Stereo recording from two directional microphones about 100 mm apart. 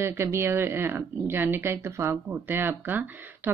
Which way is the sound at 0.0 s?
25° right (ahead or behind).